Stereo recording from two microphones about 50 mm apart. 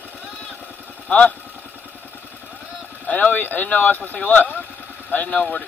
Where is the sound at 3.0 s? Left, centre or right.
Left.